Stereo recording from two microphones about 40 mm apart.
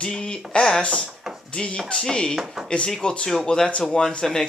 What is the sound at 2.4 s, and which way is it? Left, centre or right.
Speech, centre.